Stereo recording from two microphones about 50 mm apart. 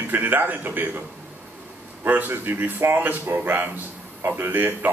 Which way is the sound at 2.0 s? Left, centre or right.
Right.